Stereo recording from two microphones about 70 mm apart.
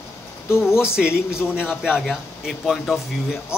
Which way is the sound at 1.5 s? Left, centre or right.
Centre.